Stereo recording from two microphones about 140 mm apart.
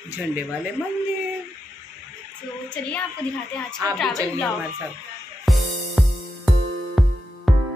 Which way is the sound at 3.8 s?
25° right (ahead or behind).